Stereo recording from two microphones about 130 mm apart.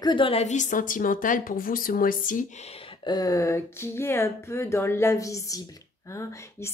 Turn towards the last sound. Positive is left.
turn(degrees=20)  # may be behind; listen again after turning